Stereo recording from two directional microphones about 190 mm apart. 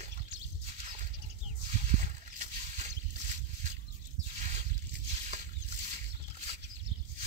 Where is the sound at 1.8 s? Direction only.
40° right (ahead or behind).